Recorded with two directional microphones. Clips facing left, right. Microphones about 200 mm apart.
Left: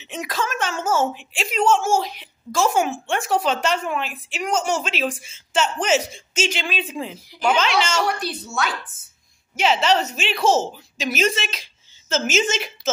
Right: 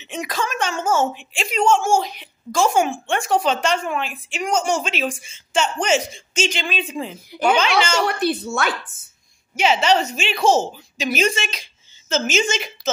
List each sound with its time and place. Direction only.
0.0 s a woman's voice: centre (ahead or behind)
8.0 s a woman's voice: 55° right (ahead or behind)
9.6 s a woman's voice: centre (ahead or behind)